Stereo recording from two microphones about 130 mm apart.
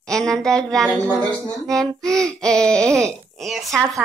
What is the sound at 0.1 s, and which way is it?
Speech, 5° left (ahead or behind).